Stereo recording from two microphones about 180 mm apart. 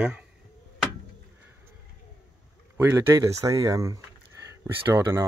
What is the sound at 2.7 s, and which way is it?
Speech, 15° right (ahead or behind).